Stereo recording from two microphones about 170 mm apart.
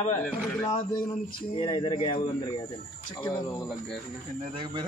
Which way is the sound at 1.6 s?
30° left (ahead or behind).